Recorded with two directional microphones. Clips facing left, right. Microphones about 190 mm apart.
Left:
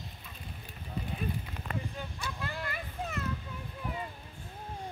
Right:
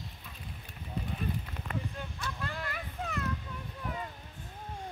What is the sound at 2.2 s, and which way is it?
Vehicle, 5° left (ahead or behind).